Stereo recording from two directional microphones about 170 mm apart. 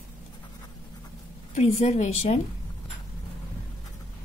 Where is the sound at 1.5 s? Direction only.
40° left (ahead or behind).